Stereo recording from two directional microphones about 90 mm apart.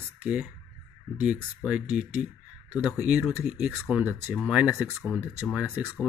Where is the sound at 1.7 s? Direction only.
15° right (ahead or behind).